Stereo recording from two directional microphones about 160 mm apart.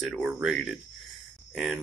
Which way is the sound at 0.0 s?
5° right (ahead or behind).